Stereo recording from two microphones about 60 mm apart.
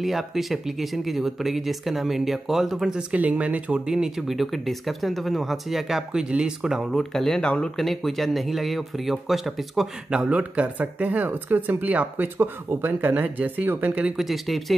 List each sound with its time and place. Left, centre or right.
0.0 s speech: centre; by 3.8 s right
3.8 s speech: centre
7.0 s speech: centre
7.8 s speech: centre
10.0 s speech: centre
14.1 s speech: centre